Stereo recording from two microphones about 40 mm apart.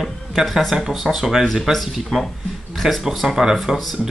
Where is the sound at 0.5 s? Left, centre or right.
Centre.